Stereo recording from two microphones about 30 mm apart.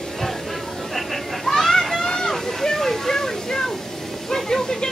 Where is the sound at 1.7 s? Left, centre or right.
Centre.